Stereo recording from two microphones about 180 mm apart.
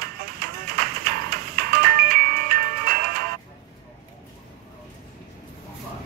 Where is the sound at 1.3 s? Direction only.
55° right (ahead or behind).